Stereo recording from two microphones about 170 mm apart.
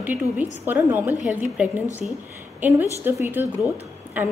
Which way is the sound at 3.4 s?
20° left (ahead or behind).